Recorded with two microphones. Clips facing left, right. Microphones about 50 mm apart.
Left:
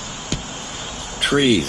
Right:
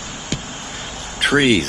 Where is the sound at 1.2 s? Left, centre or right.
Right.